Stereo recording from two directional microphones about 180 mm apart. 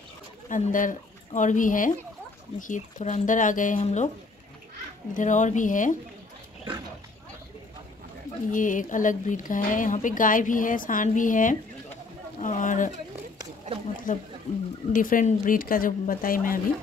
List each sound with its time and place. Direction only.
0.5 s speech: 45° left (ahead or behind)
5.1 s speech: 45° left (ahead or behind)
8.5 s speech: 45° left (ahead or behind)
14.1 s speech: 45° left (ahead or behind)